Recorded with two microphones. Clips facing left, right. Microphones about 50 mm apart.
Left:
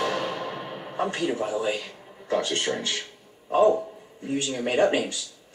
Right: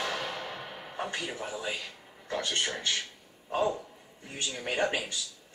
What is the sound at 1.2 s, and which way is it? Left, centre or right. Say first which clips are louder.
Speech: left 10 dB; centre.